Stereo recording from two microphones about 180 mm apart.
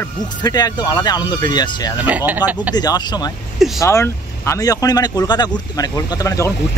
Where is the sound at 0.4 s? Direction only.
20° left (ahead or behind).